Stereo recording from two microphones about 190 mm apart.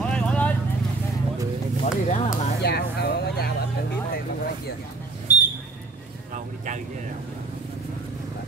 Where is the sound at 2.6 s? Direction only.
60° left (ahead or behind).